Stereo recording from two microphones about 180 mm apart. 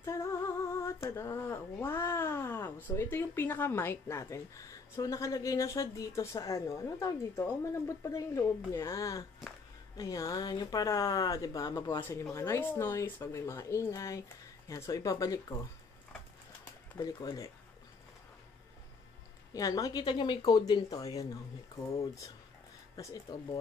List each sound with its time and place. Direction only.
0.0 s speech: 15° left (ahead or behind)
17.0 s speech: 20° left (ahead or behind)
19.5 s speech: 20° left (ahead or behind)